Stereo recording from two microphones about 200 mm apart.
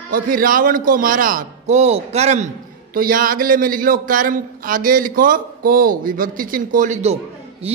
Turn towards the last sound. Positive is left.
turn(degrees=-30)  # may be behind; listen again after turning